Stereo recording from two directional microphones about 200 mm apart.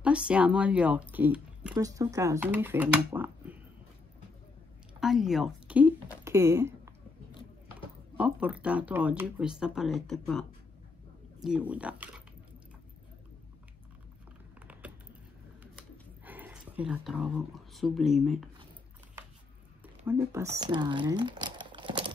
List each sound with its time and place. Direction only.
0.0 s speech: 5° right (ahead or behind)
1.1 s a sound: 5° right (ahead or behind)
1.8 s speech: 15° right (ahead or behind)
5.0 s speech: centre (ahead or behind)
8.2 s speech: 5° right (ahead or behind)
11.4 s speech: 5° right (ahead or behind)
14.7 s typing: 5° right (ahead or behind)
16.3 s a sound: 10° right (ahead or behind)
17.7 s speech: centre (ahead or behind)
20.1 s speech: 15° right (ahead or behind)